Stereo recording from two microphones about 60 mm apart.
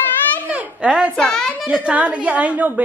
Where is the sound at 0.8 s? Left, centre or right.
Centre.